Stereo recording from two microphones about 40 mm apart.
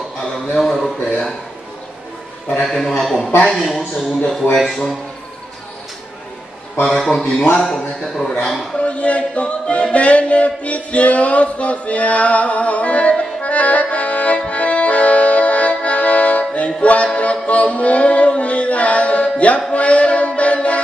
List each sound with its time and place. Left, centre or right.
0.6 s speech: centre
2.6 s a man's voice: centre
6.9 s a man's voice: centre
8.7 s a capella: left
13.4 s accordion: left
19.7 s music: left